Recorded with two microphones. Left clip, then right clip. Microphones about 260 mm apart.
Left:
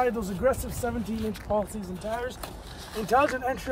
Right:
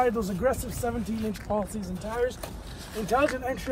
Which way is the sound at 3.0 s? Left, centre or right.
Centre.